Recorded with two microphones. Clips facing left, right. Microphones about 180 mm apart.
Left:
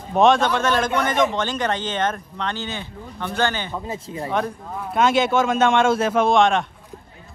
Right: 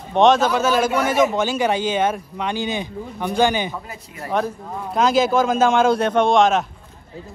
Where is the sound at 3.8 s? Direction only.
25° left (ahead or behind).